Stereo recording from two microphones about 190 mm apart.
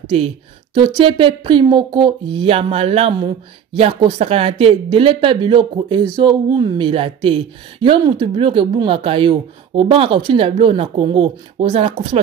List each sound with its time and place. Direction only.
0.1 s speech: 35° right (ahead or behind)